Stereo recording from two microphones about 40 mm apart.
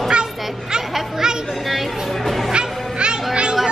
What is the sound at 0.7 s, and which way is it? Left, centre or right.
Speech, centre.